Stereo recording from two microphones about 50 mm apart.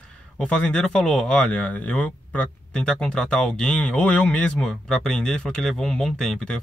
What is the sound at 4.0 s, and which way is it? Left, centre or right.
Speech, left.